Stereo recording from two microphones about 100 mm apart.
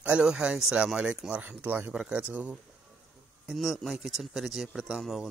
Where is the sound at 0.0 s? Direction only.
10° right (ahead or behind).